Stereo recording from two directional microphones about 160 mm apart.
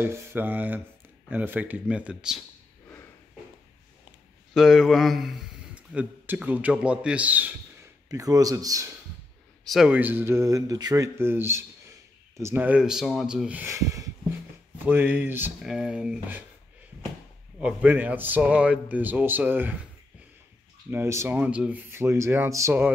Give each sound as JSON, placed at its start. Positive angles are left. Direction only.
{"t": 0.0, "sound": "speech", "side_deg": -15}
{"t": 4.6, "sound": "speech", "side_deg": 0}
{"t": 8.1, "sound": "speech", "side_deg": -20}
{"t": 9.7, "sound": "speech", "side_deg": -5}
{"t": 17.6, "sound": "speech", "side_deg": -10}
{"t": 20.9, "sound": "speech", "side_deg": -15}